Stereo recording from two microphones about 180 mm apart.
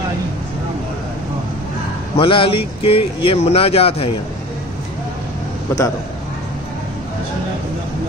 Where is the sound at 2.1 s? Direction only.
30° left (ahead or behind).